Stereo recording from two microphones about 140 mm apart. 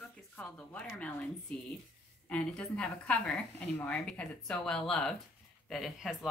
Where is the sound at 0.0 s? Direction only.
10° left (ahead or behind).